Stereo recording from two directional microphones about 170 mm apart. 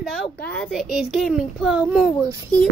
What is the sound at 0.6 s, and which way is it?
A child's voice, centre (ahead or behind).